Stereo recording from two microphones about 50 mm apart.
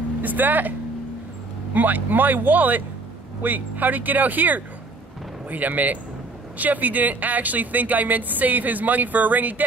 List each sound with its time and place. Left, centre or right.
0.2 s speech: right